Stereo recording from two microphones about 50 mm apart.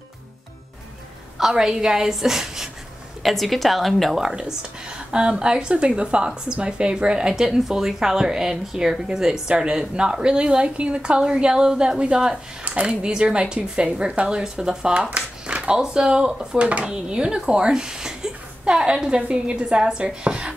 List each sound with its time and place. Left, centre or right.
1.5 s a woman's voice: centre
4.2 s speech: centre
16.5 s speech: right